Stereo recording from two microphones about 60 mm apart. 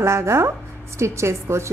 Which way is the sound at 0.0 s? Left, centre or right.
Right.